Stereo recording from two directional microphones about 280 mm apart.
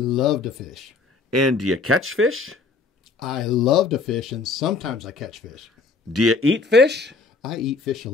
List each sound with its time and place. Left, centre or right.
0.0 s speech: centre
1.3 s speech: right
3.2 s speech: centre
6.1 s speech: right
7.4 s speech: centre